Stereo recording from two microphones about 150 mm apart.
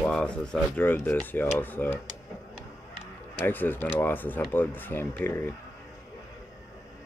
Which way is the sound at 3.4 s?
10° left (ahead or behind).